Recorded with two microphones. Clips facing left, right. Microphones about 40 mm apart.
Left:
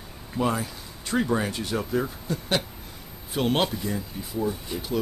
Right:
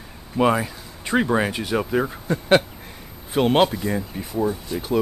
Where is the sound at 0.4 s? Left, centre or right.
Right.